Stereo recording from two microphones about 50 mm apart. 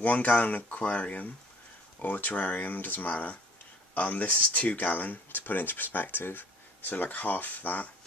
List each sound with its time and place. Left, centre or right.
0.0 s speech: left